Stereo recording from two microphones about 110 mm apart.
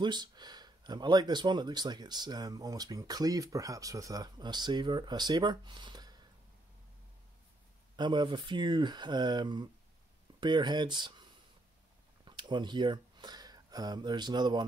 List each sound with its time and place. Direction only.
0.0 s speech: 40° right (ahead or behind)
7.9 s speech: 45° right (ahead or behind)
12.3 s speech: 45° right (ahead or behind)